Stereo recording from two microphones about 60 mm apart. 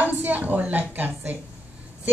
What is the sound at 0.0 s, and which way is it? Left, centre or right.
A woman's voice, right.